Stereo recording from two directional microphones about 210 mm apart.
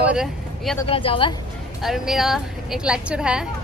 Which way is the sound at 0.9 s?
25° left (ahead or behind).